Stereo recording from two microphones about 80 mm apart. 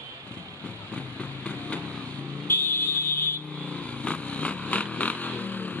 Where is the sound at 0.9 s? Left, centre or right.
Left.